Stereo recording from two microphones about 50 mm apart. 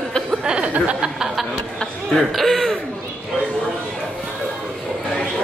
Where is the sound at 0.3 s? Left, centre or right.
Centre.